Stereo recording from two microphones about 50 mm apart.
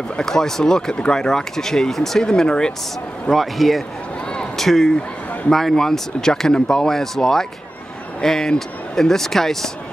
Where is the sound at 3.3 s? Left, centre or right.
Centre.